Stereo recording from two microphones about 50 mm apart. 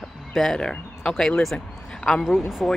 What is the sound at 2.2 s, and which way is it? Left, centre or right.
Speech, centre.